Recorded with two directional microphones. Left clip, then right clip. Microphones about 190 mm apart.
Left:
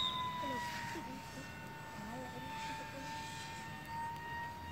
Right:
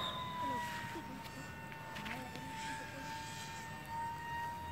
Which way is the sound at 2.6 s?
20° right (ahead or behind).